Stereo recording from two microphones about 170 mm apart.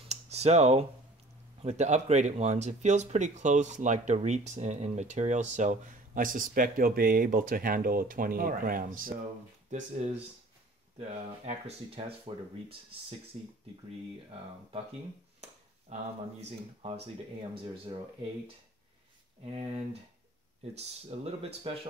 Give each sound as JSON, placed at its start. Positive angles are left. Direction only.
{"t": 0.1, "sound": "a sound", "side_deg": -40}
{"t": 1.6, "sound": "speech", "side_deg": -40}
{"t": 11.0, "sound": "speech", "side_deg": -40}
{"t": 15.9, "sound": "speech", "side_deg": -40}
{"t": 19.5, "sound": "speech", "side_deg": -35}